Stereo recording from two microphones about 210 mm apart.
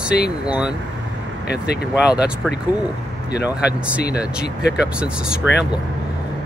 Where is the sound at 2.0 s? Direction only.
5° right (ahead or behind).